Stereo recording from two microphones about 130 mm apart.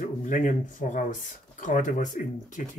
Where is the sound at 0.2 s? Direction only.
80° left.